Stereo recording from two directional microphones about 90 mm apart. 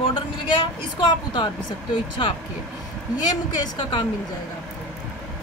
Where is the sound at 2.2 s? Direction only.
75° left (ahead or behind).